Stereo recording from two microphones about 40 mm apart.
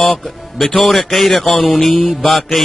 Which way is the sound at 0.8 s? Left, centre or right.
Centre.